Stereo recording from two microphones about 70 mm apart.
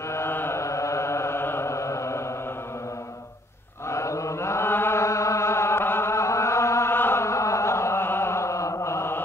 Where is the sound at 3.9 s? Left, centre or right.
Left.